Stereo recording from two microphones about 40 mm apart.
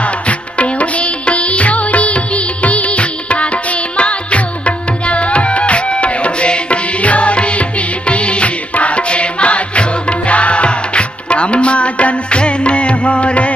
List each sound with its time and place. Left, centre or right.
0.0 s music: left